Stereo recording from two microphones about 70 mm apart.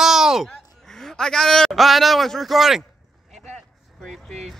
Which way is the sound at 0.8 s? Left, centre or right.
Centre.